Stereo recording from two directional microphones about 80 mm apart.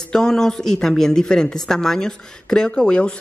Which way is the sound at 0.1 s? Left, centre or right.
Centre.